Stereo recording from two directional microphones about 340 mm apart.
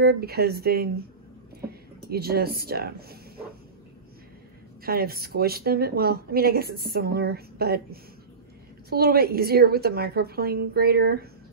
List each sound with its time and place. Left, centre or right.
0.0 s a woman's voice: right
2.0 s a woman's voice: right
4.8 s a woman's voice: right